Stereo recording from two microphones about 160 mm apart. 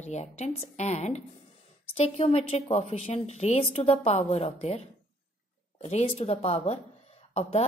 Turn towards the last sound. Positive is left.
turn(degrees=40)  # may be behind; listen again after turning